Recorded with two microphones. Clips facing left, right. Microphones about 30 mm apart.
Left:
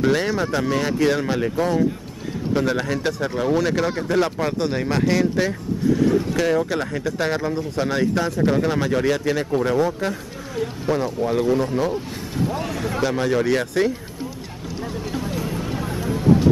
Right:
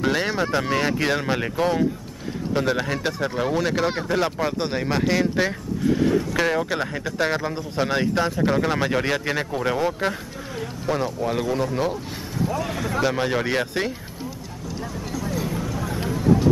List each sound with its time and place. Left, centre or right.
0.0 s speech: centre
2.5 s speech: centre
10.5 s speech: centre
13.0 s speech: centre
15.6 s vehicle: left
16.1 s vehicle: centre